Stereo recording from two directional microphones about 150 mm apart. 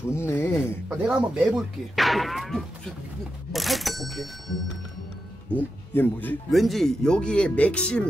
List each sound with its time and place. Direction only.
0.1 s speech: 15° left (ahead or behind)
0.8 s speech: 5° right (ahead or behind)
5.5 s speech: 10° left (ahead or behind)
6.5 s speech: centre (ahead or behind)